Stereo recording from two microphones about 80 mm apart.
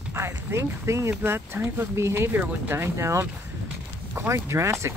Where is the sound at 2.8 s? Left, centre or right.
Right.